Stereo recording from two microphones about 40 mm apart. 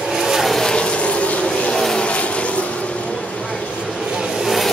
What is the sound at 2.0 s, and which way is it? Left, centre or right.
Vehicle, left.